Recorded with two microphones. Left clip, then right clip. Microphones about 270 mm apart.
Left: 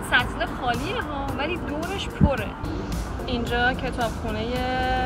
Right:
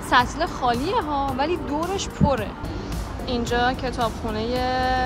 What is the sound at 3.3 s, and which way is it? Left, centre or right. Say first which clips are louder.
Speech: right 1 dB; centre.